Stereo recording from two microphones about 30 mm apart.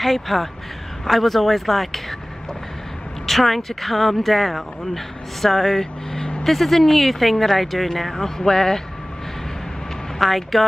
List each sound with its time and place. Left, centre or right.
0.0 s speech: centre
3.3 s speech: centre
10.1 s speech: centre